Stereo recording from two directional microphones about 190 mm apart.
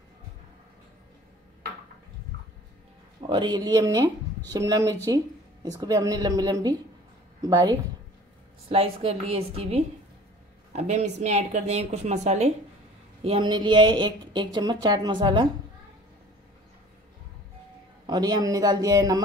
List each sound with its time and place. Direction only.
3.2 s speech: 25° right (ahead or behind)
18.0 s speech: 20° right (ahead or behind)